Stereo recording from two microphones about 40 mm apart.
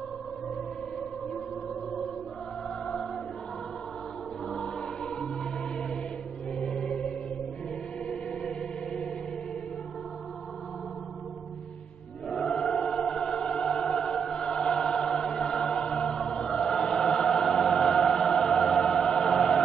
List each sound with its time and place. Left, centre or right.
6.6 s music: left
8.1 s music: left
12.3 s choir: centre
13.7 s music: centre